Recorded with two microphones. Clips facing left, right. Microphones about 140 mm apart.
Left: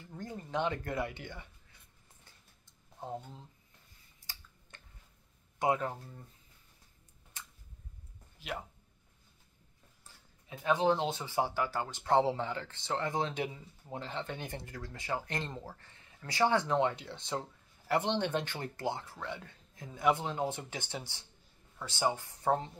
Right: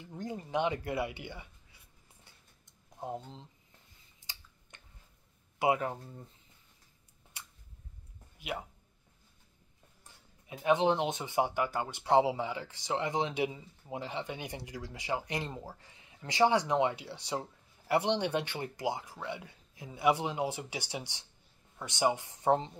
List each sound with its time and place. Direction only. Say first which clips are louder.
0.0 s music: right 3 dB; 15° right (ahead or behind)
2.6 s a sound: right 3 dB; 15° right (ahead or behind)
4.2 s a sound: right 1 dB; 20° right (ahead or behind)
5.6 s speech: right 2 dB; 5° right (ahead or behind)
8.4 s speech: right 2 dB; 10° right (ahead or behind)
10.6 s speech: right 2 dB; 20° right (ahead or behind)